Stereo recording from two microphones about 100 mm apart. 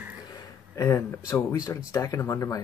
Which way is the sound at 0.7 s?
30° left (ahead or behind).